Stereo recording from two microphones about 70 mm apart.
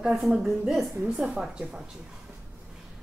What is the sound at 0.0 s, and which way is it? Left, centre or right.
Speech, centre.